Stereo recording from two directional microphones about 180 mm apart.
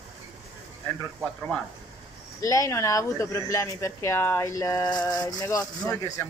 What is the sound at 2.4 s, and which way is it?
Speech, 20° left (ahead or behind).